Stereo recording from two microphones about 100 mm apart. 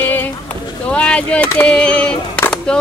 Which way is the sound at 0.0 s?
20° left (ahead or behind).